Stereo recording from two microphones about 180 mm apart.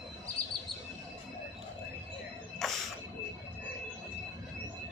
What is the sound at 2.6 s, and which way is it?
Music, centre (ahead or behind).